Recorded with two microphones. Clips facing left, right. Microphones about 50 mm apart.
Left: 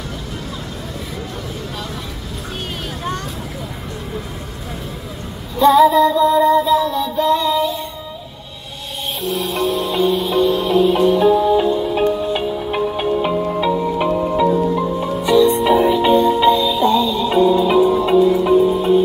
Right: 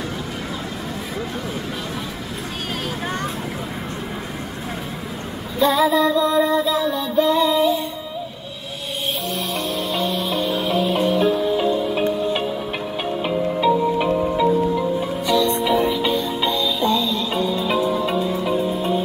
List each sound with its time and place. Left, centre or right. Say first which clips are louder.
5.6 s music: left 6 dB; centre
9.2 s music: left 5 dB; centre; by 15.5 s left
15.6 s music: left 5 dB; centre; by 16.3 s left
16.3 s music: left 7 dB; centre
18.5 s music: left 8 dB; centre